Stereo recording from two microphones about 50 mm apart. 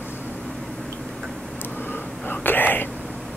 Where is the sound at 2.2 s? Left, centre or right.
Left.